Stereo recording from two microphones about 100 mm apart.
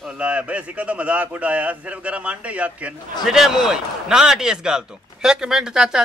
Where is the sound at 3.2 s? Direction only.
5° right (ahead or behind).